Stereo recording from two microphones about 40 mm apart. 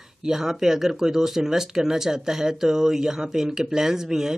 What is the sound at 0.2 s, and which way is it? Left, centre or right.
Speech, centre.